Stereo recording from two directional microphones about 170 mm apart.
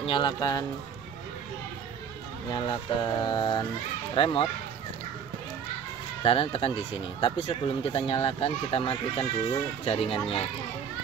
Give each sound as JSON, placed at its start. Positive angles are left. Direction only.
{"t": 0.0, "sound": "speech", "side_deg": 30}
{"t": 2.5, "sound": "speech", "side_deg": 25}
{"t": 6.2, "sound": "speech", "side_deg": 35}